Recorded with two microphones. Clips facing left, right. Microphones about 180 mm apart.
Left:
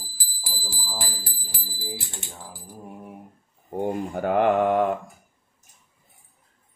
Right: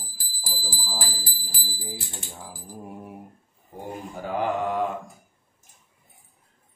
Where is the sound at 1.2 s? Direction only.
70° left (ahead or behind).